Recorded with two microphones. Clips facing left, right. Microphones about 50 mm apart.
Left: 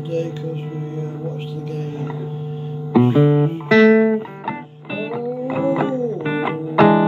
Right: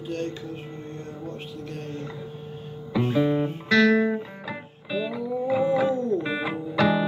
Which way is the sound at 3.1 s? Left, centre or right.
Left.